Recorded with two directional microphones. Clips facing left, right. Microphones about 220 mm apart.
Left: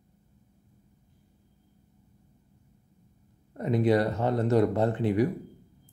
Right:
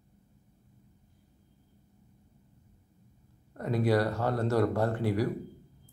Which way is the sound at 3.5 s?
20° left (ahead or behind).